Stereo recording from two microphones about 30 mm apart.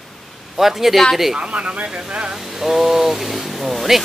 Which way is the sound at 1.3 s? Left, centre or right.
Right.